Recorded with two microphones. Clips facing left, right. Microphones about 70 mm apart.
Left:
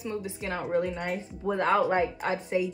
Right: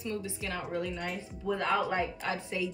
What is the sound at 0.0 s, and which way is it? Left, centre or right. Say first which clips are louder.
A woman's voice: left 3 dB; left.